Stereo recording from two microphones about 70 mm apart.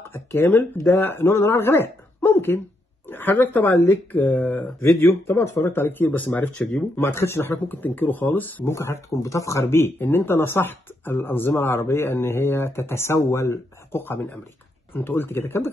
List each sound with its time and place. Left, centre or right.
0.0 s speech: left
7.5 s speech: left
8.7 s speech: left